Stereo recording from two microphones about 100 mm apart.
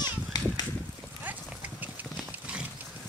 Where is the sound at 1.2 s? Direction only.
15° right (ahead or behind).